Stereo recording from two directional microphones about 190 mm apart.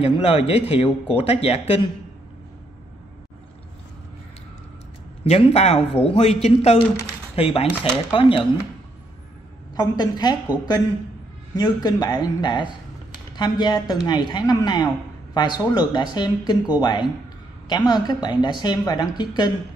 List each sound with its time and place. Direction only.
0.0 s speech: 30° left (ahead or behind)
5.2 s speech: 30° left (ahead or behind)
9.8 s speech: 20° left (ahead or behind)
11.5 s speech: 20° left (ahead or behind)